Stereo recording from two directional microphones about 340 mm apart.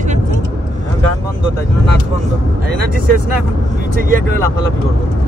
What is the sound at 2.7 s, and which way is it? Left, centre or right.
Speech, right.